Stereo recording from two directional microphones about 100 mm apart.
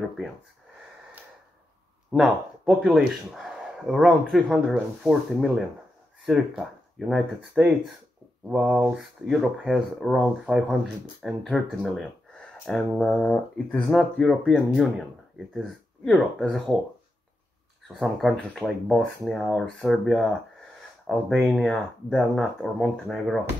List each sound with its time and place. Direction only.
2.1 s speech: 5° right (ahead or behind)
8.5 s speech: 15° right (ahead or behind)
8.9 s speech: 5° right (ahead or behind)
15.5 s speech: centre (ahead or behind)
17.9 s speech: centre (ahead or behind)
21.3 s speech: centre (ahead or behind)